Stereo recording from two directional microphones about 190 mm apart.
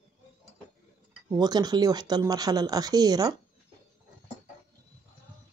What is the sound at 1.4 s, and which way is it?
Speech, 20° right (ahead or behind).